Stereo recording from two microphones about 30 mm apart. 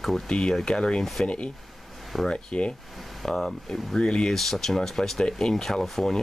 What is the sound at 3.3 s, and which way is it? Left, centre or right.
Speech, centre.